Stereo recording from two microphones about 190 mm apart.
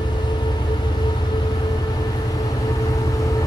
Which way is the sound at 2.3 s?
20° left (ahead or behind).